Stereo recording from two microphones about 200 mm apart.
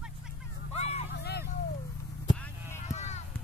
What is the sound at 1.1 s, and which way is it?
Vehicle, 55° left (ahead or behind).